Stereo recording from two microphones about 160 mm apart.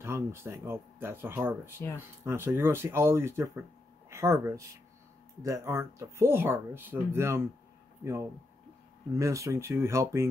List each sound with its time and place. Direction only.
0.0 s speech: 15° right (ahead or behind)